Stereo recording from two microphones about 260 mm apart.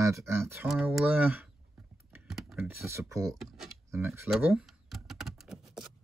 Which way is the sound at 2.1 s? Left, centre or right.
Centre.